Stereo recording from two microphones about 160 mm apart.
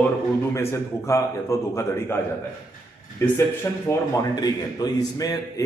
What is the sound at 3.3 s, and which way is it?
A man's voice, 15° left (ahead or behind).